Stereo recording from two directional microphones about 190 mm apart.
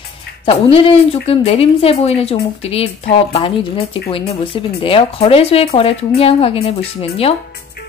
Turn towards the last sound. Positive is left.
turn(degrees=30)  # may be behind; listen again after turning